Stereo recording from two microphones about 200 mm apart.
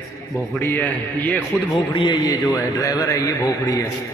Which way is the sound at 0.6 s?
10° left (ahead or behind).